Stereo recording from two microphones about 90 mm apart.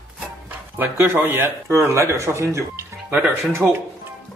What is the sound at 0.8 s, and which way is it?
Speech, 25° right (ahead or behind).